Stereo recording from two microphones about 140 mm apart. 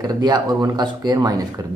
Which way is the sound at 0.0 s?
30° right (ahead or behind).